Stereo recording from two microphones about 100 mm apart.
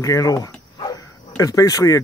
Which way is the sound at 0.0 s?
35° left (ahead or behind).